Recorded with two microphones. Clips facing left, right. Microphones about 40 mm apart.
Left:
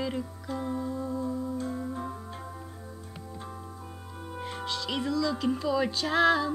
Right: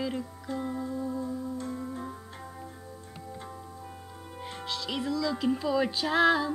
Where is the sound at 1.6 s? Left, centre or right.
Centre.